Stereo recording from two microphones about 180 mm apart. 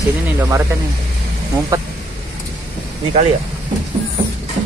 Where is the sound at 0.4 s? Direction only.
15° right (ahead or behind).